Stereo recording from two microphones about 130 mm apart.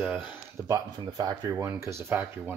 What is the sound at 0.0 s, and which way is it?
Speech, 10° right (ahead or behind).